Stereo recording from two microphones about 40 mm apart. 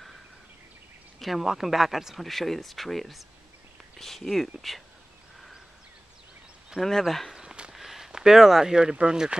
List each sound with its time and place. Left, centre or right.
1.2 s speech: centre
2.2 s speech: centre
6.8 s speech: centre
7.3 s walk: right
7.7 s a sound: centre
8.1 s speech: centre